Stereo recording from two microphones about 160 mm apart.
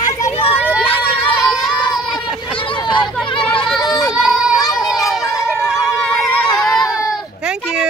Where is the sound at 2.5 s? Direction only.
30° left (ahead or behind).